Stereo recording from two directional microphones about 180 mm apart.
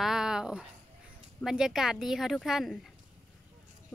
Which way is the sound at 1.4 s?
5° right (ahead or behind).